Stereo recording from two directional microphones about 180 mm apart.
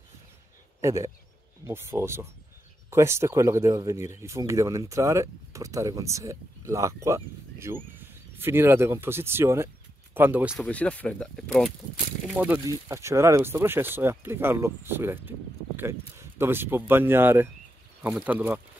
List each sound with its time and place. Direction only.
0.7 s speech: 15° right (ahead or behind)
10.6 s speech: 5° left (ahead or behind)
12.4 s speech: 10° right (ahead or behind)